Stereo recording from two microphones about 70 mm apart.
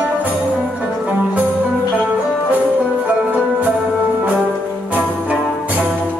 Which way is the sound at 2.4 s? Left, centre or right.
Right.